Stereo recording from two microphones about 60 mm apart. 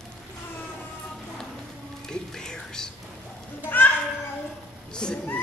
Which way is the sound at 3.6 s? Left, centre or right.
Left.